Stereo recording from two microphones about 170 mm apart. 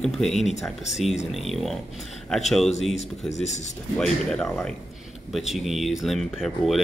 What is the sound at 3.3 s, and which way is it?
Speech, 40° left (ahead or behind).